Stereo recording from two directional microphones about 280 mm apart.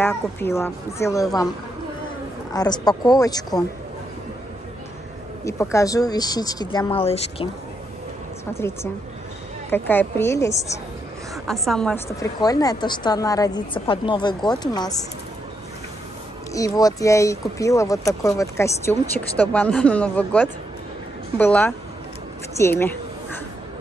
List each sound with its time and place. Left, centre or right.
0.0 s speech: centre
2.5 s speech: centre
5.4 s speech: centre
8.5 s speech: centre
16.5 s a woman's voice: centre